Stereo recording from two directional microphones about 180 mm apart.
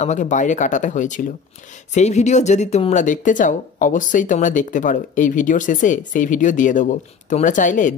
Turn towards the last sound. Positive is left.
turn(degrees=45)  # may be behind; listen again after turning